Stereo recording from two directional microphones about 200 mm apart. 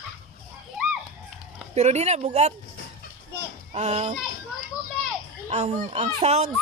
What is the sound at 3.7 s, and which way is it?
Speech, 30° right (ahead or behind).